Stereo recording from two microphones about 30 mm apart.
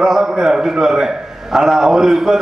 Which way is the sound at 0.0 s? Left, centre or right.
Centre.